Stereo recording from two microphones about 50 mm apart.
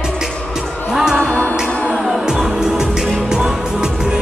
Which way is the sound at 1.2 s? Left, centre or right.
Left.